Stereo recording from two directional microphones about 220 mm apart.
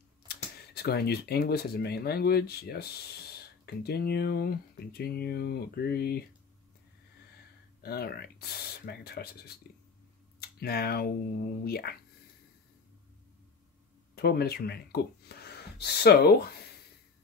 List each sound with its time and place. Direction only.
0.3 s speech: 45° left (ahead or behind)
7.8 s speech: 45° left (ahead or behind)
14.1 s speech: 45° left (ahead or behind)